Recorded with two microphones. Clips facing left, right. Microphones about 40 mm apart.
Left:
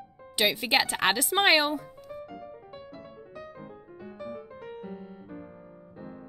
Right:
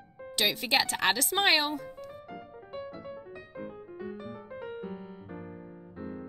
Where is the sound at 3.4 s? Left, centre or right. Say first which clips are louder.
Right 1 dB; centre.